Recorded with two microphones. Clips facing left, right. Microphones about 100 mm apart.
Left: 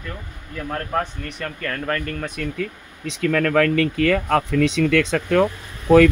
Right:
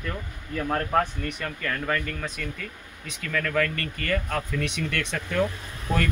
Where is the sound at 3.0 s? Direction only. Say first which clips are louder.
Left 10 dB; 90° left.